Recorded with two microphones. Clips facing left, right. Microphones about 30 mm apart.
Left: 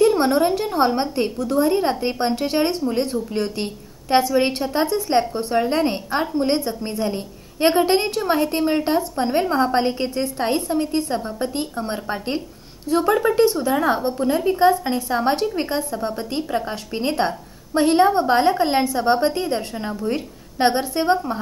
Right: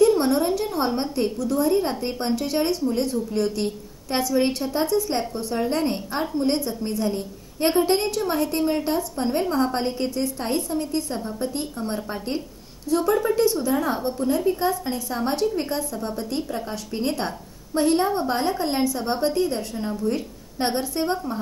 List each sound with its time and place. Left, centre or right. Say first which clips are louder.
0.0 s a woman's voice: left 2 dB; left